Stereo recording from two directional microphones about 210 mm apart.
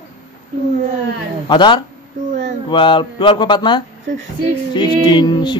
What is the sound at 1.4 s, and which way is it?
A man's voice, 20° left (ahead or behind).